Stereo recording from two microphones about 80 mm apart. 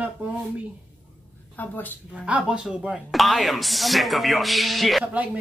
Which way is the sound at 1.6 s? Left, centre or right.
Left.